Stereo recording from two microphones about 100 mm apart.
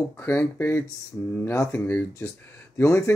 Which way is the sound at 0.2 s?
25° left (ahead or behind).